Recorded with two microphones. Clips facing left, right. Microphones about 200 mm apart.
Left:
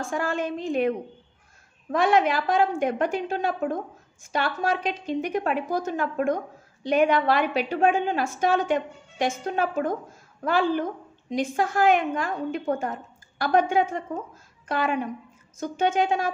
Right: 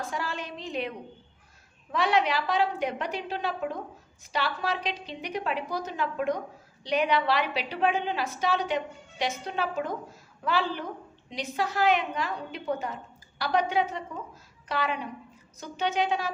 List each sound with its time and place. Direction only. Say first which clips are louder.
0.0 s a woman's voice: left 7 dB; 50° left (ahead or behind)